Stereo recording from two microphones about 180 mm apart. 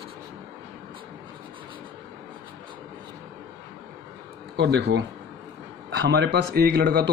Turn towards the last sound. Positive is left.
turn(degrees=-60)  # may be behind; listen again after turning